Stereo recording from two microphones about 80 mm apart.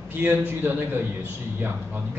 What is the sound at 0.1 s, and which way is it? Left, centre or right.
Speech, right.